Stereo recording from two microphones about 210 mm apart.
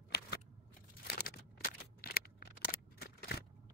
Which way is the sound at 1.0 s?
45° left (ahead or behind).